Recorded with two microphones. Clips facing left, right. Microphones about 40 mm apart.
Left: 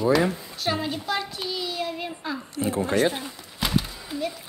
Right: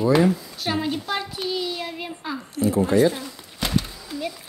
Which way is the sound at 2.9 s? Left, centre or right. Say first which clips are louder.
Right 4 dB; left.